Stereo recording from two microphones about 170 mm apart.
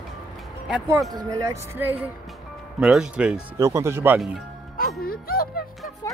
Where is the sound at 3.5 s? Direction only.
15° right (ahead or behind).